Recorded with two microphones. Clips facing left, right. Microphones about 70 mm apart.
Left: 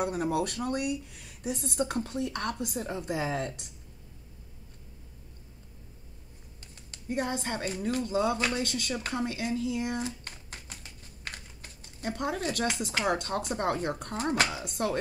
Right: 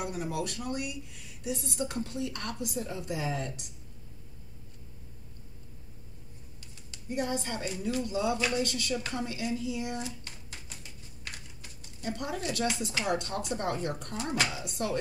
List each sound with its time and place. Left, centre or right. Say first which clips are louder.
0.0 s speech: left 5 dB; left
6.9 s speech: left 1 dB; left